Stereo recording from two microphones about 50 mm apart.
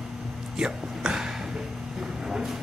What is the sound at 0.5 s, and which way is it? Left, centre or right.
Speech, centre.